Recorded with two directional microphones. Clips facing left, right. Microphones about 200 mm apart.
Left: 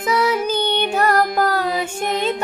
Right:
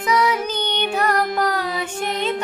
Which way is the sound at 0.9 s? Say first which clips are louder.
Left 2 dB; 45° left (ahead or behind).